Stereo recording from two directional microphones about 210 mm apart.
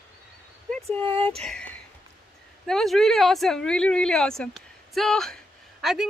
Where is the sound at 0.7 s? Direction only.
5° left (ahead or behind).